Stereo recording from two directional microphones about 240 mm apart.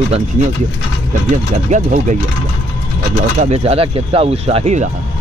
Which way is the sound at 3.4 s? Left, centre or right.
Right.